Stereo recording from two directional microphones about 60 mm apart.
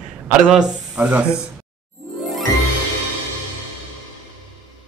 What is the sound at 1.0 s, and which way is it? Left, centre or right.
Speech, right.